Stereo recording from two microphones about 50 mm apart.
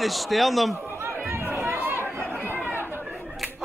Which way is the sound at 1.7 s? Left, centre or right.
Right.